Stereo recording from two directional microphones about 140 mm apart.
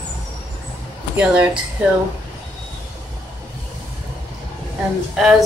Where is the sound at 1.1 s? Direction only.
10° right (ahead or behind).